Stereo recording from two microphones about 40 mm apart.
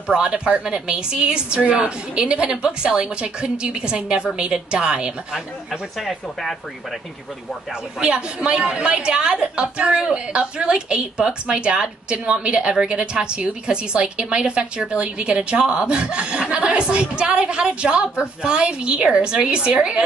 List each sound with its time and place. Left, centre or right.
0.1 s a woman's voice: right
5.7 s speech: centre
8.0 s a woman's voice: right